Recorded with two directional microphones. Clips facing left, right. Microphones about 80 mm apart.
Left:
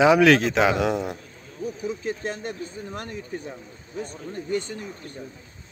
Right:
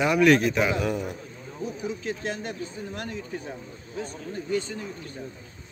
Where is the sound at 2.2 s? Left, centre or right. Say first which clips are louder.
Left 1 dB; left.